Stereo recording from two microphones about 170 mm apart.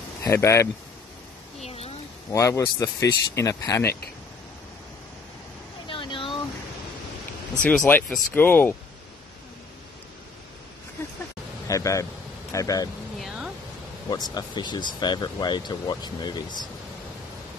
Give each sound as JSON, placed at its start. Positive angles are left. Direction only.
{"t": 0.2, "sound": "speech", "side_deg": 15}
{"t": 1.6, "sound": "a sound", "side_deg": 35}
{"t": 2.3, "sound": "speech", "side_deg": 20}
{"t": 5.9, "sound": "vehicle", "side_deg": 30}
{"t": 7.6, "sound": "speech", "side_deg": 10}
{"t": 11.6, "sound": "speech", "side_deg": 20}
{"t": 14.0, "sound": "speech", "side_deg": 25}